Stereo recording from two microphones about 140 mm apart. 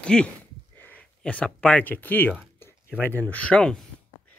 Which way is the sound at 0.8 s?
10° left (ahead or behind).